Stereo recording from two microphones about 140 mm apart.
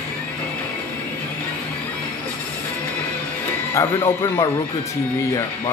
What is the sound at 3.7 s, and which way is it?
Speech, 20° left (ahead or behind).